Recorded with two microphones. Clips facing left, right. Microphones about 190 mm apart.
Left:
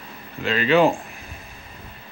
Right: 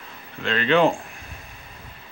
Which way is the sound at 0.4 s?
5° left (ahead or behind).